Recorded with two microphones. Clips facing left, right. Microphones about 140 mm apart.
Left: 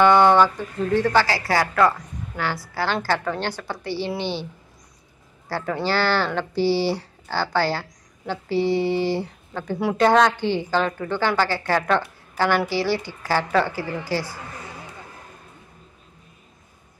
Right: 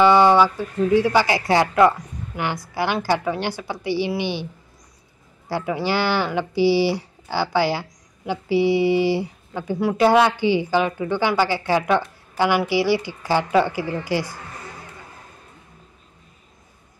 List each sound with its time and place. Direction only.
0.0 s speech: 10° right (ahead or behind)
5.5 s speech: 10° right (ahead or behind)